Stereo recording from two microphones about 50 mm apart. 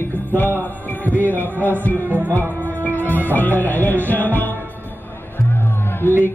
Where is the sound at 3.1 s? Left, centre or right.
Left.